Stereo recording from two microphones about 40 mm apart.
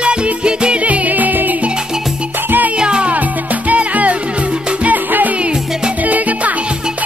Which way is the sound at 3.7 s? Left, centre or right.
Right.